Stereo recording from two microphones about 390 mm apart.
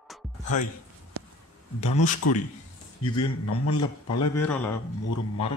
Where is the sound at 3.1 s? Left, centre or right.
Left.